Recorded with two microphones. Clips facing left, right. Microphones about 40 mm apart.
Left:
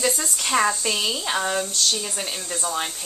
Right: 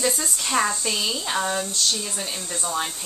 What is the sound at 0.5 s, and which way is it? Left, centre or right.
Speech, centre.